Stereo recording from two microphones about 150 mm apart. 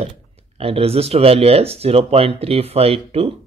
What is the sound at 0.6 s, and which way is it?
Speech, 40° right (ahead or behind).